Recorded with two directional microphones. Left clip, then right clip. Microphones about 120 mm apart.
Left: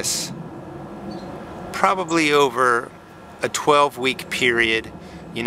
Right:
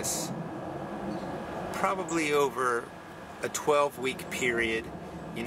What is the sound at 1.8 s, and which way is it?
Speech, 45° left (ahead or behind).